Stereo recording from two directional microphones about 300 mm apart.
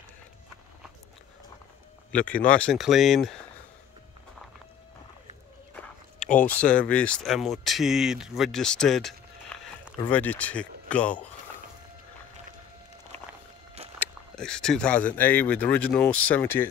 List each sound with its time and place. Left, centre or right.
2.1 s speech: centre
6.1 s a sound: left
6.4 s speech: centre
13.9 s speech: centre